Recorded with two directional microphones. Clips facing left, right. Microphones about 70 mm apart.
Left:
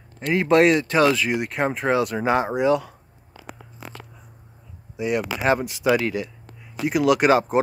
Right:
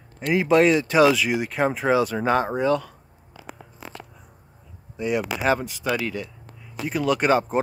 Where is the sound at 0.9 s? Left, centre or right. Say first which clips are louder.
Right 1 dB; centre.